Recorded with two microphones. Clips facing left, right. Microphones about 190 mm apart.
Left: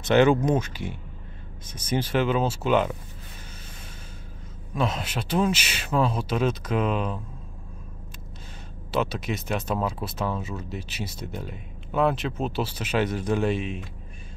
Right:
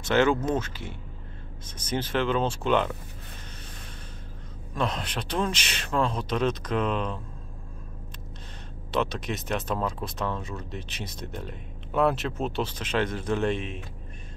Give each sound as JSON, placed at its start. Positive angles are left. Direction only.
{"t": 0.0, "sound": "speech", "side_deg": 15}
{"t": 4.7, "sound": "speech", "side_deg": 5}
{"t": 8.9, "sound": "speech", "side_deg": 5}